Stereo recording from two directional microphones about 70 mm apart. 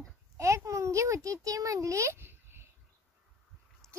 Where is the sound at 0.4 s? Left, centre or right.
Right.